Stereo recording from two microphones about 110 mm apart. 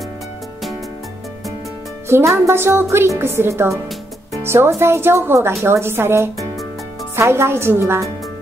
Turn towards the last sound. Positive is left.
turn(degrees=-20)  # may be behind; listen again after turning